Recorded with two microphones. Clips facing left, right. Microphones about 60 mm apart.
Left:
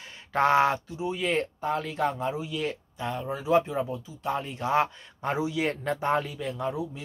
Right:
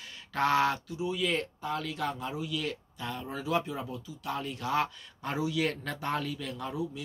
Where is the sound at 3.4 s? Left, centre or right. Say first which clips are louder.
Left 8 dB; left.